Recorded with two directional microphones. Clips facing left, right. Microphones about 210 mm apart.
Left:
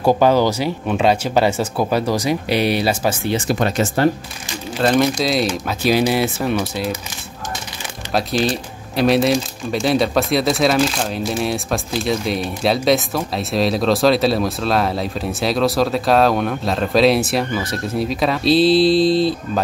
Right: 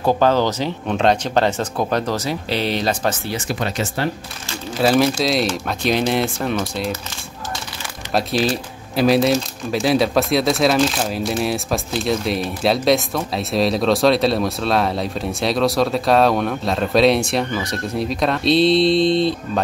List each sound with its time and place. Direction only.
0.0 s speech: 10° left (ahead or behind)
3.4 s speech: 50° left (ahead or behind)
4.7 s speech: 5° right (ahead or behind)
8.1 s speech: centre (ahead or behind)